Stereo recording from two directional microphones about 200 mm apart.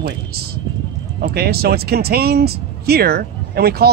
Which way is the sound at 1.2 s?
50° right (ahead or behind).